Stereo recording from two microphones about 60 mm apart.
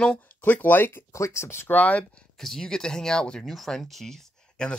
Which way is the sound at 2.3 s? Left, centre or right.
Centre.